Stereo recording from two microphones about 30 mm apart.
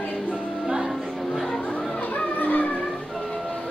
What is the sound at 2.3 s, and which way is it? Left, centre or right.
Music, left.